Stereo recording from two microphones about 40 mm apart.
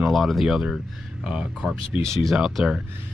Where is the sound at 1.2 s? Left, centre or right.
Centre.